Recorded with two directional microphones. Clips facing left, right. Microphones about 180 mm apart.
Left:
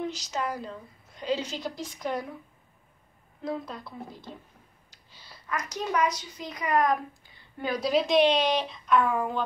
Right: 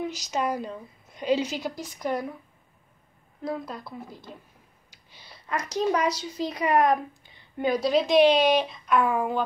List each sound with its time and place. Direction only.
0.0 s a woman's voice: 10° right (ahead or behind)
3.4 s a woman's voice: 5° right (ahead or behind)
4.9 s a sound: 15° right (ahead or behind)
5.5 s a child's voice: 35° right (ahead or behind)
7.8 s a woman's voice: centre (ahead or behind)